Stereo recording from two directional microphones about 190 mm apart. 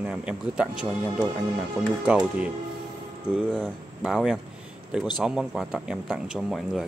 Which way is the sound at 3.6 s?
Centre (ahead or behind).